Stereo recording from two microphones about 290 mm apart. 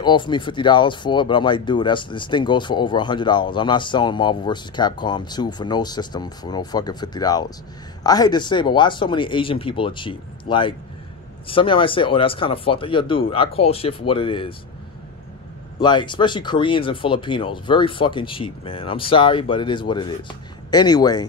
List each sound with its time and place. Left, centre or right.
0.0 s speech: centre
15.8 s speech: centre